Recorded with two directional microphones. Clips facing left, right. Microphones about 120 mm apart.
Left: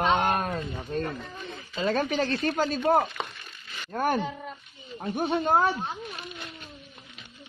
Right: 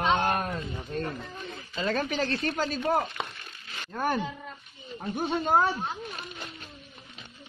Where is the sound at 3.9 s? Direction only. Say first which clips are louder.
Left 2 dB; 40° left (ahead or behind).